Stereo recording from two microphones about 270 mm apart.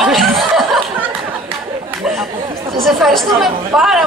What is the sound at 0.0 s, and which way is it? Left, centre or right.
Chuckle, centre.